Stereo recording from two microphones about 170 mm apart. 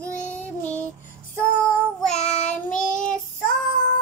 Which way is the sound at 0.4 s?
10° left (ahead or behind).